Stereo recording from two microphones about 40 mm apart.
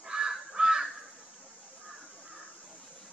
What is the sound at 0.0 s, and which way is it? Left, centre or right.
Crow, centre.